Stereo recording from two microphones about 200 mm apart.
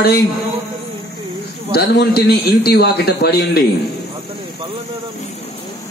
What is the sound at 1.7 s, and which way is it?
A man's voice, 55° left (ahead or behind).